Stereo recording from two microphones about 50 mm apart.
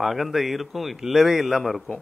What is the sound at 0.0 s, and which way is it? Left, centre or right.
A man's voice, centre.